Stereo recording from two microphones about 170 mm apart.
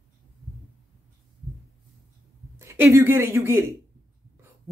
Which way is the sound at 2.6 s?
15° right (ahead or behind).